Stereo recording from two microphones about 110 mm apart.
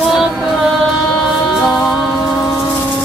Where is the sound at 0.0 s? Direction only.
Centre (ahead or behind).